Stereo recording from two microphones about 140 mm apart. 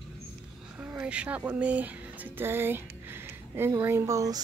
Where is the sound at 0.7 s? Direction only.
10° right (ahead or behind).